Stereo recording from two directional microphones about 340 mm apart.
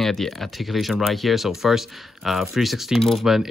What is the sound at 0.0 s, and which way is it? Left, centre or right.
Speech, centre.